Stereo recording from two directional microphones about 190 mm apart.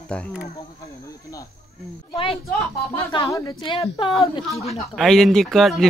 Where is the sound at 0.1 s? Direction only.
5° left (ahead or behind).